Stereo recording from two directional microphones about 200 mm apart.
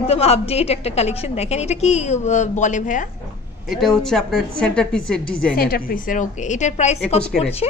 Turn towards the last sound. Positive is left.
turn(degrees=30)  # may be behind; listen again after turning